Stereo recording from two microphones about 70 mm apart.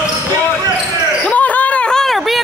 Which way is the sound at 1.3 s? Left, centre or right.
Left.